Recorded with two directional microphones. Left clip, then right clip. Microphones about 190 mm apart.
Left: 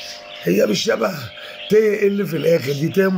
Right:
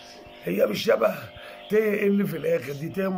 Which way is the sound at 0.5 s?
35° left (ahead or behind).